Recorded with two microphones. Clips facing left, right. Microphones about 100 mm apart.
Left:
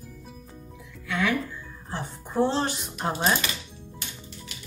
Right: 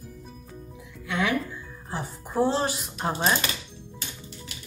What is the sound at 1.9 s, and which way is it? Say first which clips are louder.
A woman's voice: even; 5° right (ahead or behind).